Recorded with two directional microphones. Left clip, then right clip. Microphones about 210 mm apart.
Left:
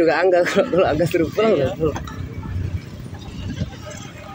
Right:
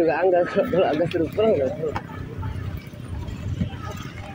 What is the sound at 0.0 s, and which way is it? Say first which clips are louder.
Speech: left 4 dB; 20° left (ahead or behind).